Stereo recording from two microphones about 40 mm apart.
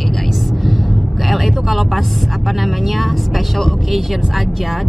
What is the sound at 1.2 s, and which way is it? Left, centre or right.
Speech, centre.